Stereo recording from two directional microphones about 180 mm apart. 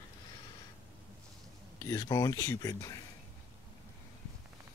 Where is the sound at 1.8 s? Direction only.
20° left (ahead or behind).